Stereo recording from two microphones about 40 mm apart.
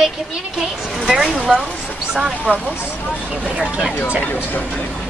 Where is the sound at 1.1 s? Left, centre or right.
Centre.